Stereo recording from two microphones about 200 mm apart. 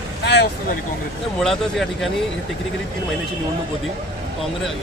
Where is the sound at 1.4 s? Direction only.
Centre (ahead or behind).